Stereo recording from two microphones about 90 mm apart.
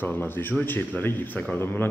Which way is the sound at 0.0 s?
20° left (ahead or behind).